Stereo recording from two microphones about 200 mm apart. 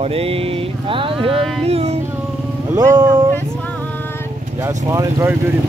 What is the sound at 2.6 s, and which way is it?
Speech, 20° right (ahead or behind).